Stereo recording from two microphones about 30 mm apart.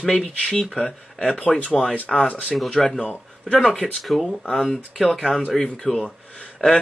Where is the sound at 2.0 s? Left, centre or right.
Left.